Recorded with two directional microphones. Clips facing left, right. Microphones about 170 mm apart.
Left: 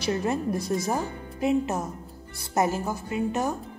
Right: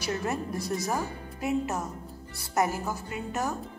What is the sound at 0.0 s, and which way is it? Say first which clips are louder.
Speech: left 5 dB; 25° left (ahead or behind).